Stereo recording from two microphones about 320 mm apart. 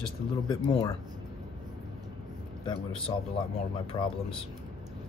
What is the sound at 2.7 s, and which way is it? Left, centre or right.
Speech, centre.